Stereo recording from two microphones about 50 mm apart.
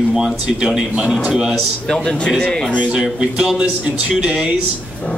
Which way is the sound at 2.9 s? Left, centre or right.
Centre.